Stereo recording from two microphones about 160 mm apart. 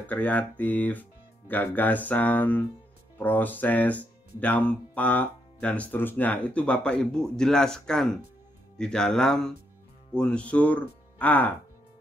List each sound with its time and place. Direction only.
0.0 s speech: 10° left (ahead or behind)